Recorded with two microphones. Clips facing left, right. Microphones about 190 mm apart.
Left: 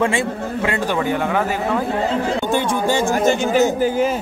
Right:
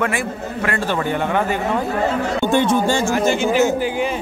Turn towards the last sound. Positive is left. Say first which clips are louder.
# left 2 dB
turn(degrees=40)  # may be behind; listen again after turning